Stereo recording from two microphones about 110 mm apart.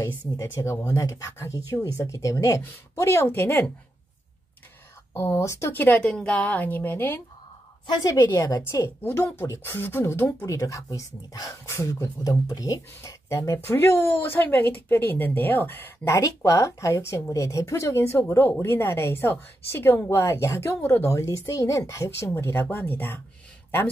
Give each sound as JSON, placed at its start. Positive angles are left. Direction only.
{"t": 0.4, "sound": "speech", "side_deg": 30}
{"t": 5.1, "sound": "speech", "side_deg": 25}
{"t": 7.8, "sound": "a woman's voice", "side_deg": 40}
{"t": 16.1, "sound": "speech", "side_deg": 30}